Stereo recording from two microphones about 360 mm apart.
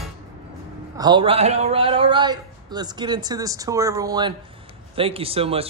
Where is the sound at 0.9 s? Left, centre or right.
Centre.